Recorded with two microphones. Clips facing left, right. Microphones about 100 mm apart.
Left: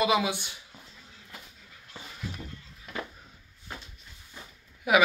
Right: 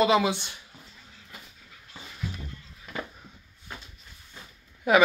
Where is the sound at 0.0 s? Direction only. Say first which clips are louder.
Right 3 dB; 10° left (ahead or behind).